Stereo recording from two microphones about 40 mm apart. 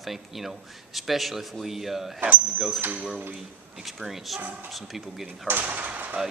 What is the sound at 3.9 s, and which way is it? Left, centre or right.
Speech, centre.